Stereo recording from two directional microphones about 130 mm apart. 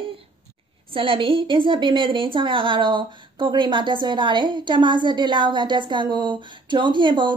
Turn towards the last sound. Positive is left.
turn(degrees=-40)  # may be behind; listen again after turning